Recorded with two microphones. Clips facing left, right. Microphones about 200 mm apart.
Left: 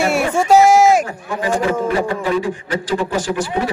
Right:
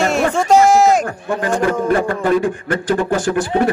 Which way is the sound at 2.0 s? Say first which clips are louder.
Right 3 dB; 50° right (ahead or behind).